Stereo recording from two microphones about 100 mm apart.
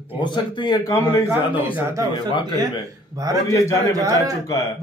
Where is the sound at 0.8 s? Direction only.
30° left (ahead or behind).